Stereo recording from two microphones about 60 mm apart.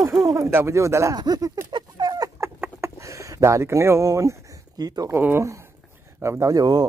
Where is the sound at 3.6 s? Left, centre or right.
Right.